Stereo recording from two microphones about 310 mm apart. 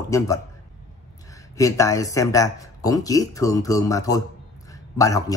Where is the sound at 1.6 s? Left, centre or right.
Centre.